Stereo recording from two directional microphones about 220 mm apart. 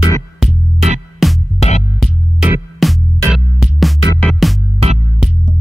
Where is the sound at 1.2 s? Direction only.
Centre (ahead or behind).